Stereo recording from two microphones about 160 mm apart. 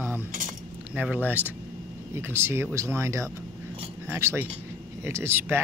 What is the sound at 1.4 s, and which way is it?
Speech, 15° left (ahead or behind).